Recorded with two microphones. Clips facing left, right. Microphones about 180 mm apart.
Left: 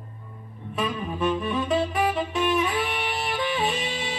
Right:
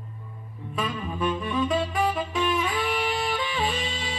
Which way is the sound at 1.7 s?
25° left (ahead or behind).